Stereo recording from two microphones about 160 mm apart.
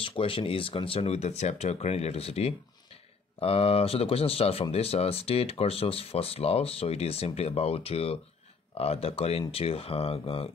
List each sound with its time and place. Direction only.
0.0 s speech: 35° left (ahead or behind)